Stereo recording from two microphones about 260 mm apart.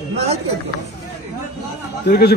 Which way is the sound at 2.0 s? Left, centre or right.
Left.